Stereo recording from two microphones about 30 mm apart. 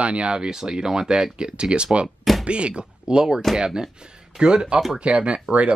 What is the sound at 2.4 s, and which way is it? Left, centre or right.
Speech, right.